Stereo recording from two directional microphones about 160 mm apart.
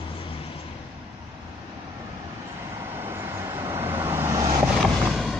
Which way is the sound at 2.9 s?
15° right (ahead or behind).